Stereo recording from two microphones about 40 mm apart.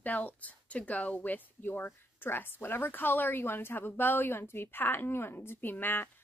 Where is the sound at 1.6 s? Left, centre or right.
Left.